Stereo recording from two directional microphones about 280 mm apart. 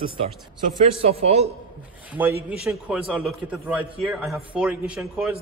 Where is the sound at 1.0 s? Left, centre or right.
Right.